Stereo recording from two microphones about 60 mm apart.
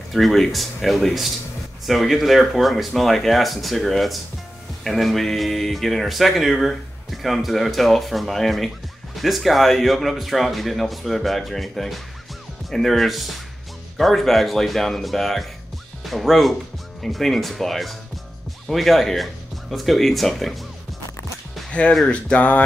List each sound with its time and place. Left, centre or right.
0.1 s speech: centre
21.6 s music: centre
22.0 s speech: left